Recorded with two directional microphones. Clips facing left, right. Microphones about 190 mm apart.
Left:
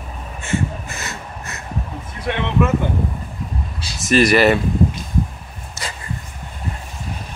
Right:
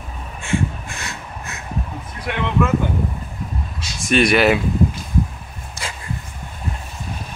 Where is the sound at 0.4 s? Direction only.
Centre (ahead or behind).